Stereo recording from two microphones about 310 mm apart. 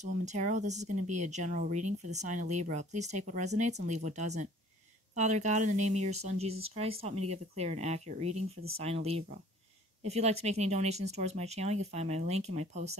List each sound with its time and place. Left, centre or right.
0.0 s speech: right